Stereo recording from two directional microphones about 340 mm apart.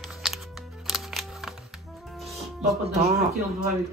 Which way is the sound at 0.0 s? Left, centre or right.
Centre.